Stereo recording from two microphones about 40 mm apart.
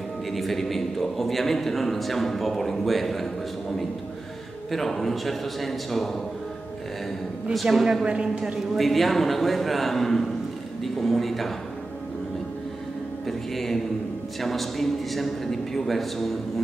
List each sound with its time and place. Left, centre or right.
0.3 s speech: centre
4.6 s speech: centre
7.5 s speech: centre
8.0 s a woman's voice: right
8.7 s speech: centre
13.3 s speech: centre